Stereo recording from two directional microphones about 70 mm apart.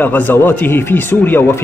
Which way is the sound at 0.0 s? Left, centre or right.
Left.